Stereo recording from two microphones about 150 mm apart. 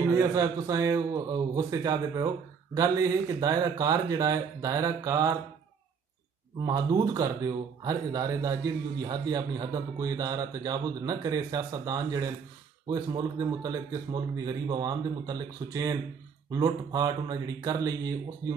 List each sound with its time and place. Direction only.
0.1 s a man's voice: 20° right (ahead or behind)
6.6 s a man's voice: 25° right (ahead or behind)